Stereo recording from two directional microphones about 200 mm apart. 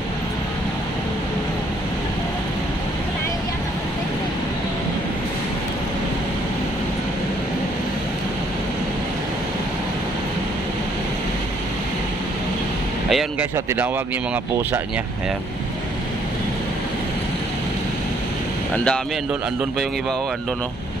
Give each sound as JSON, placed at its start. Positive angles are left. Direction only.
{"t": 13.1, "sound": "speech", "side_deg": -10}